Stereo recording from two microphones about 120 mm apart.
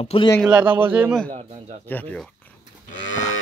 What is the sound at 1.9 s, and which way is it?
Speech, 15° left (ahead or behind).